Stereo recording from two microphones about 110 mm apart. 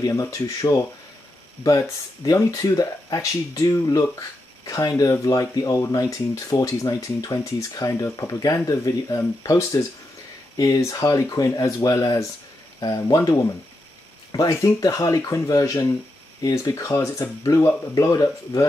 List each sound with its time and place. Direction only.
0.0 s speech: 30° left (ahead or behind)